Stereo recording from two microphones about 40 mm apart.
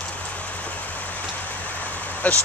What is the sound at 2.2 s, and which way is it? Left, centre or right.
Vehicle, left.